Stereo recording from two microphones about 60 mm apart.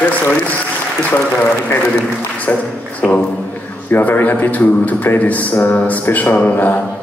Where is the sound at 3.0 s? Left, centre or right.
Centre.